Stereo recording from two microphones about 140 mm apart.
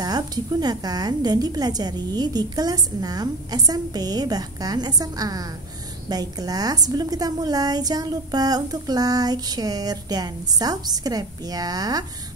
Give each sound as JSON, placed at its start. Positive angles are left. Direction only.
{"t": 0.0, "sound": "a woman's voice", "side_deg": -30}